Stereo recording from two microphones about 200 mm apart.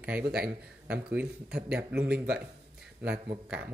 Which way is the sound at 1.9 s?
55° right (ahead or behind).